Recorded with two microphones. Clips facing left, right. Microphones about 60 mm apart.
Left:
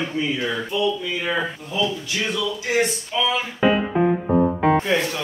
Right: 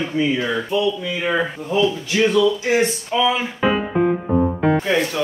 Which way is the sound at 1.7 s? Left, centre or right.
Right.